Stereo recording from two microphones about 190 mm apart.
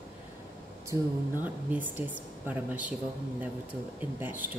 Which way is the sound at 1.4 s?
10° right (ahead or behind).